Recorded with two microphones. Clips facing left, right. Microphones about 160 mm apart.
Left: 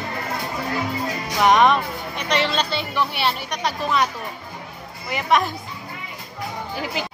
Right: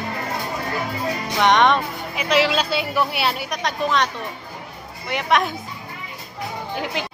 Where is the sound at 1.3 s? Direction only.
5° left (ahead or behind).